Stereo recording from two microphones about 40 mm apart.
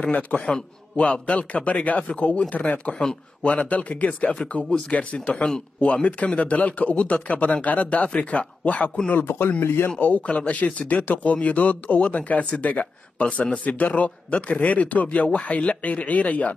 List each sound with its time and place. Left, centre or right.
0.0 s speech: left
4.6 s speech: centre
4.9 s speech: left
9.2 s speech: left
9.8 s speech: left